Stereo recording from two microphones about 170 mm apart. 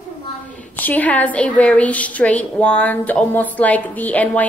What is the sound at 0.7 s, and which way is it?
A woman's voice, 10° left (ahead or behind).